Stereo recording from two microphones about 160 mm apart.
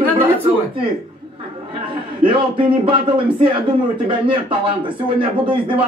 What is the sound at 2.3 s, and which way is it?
Speech, 30° right (ahead or behind).